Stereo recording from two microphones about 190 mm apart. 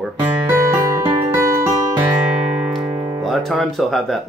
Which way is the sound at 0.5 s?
15° right (ahead or behind).